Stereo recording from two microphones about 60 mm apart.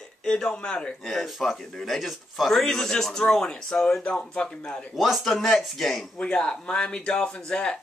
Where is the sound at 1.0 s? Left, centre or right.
Centre.